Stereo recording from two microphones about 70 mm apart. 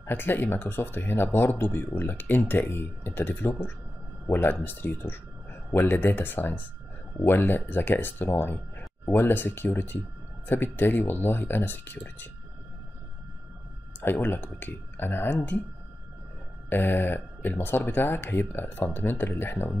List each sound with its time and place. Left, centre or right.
0.0 s speech: left
14.0 s speech: left
16.6 s speech: left